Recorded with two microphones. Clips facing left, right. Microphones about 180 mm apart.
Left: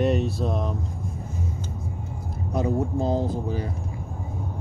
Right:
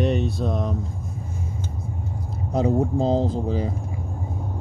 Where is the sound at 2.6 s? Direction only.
20° right (ahead or behind).